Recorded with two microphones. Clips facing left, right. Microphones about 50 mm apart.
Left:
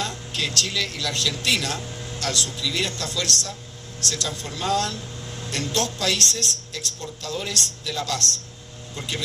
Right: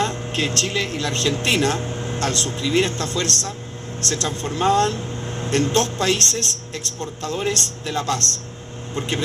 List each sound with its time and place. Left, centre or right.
0.0 s speech: right